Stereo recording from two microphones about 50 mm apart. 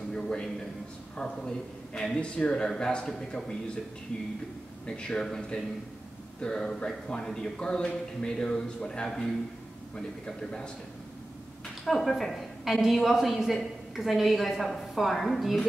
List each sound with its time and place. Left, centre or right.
0.1 s speech: centre
4.8 s speech: centre
11.8 s a woman's voice: centre